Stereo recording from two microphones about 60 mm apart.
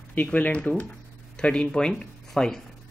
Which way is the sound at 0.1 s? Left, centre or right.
Left.